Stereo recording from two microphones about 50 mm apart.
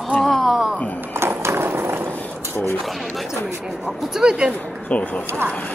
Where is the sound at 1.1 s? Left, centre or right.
Right.